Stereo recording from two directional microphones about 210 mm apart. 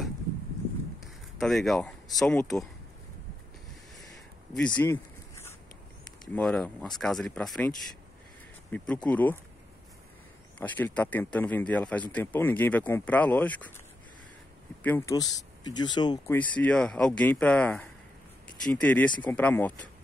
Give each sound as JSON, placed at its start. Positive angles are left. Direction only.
{"t": 1.0, "sound": "speech", "side_deg": 0}
{"t": 4.6, "sound": "a sound", "side_deg": 5}
{"t": 6.3, "sound": "speech", "side_deg": 0}
{"t": 8.7, "sound": "speech", "side_deg": 5}
{"t": 10.6, "sound": "speech", "side_deg": 5}
{"t": 14.8, "sound": "speech", "side_deg": 10}
{"t": 16.3, "sound": "speech", "side_deg": 5}